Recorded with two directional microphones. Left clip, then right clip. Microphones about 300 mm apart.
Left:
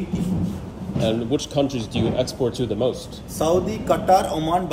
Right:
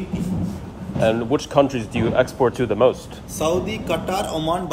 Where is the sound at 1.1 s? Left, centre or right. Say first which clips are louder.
Right 3 dB; centre.